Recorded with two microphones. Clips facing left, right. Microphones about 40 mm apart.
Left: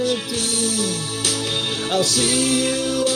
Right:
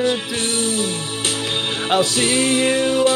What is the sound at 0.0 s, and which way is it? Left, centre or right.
Music, right.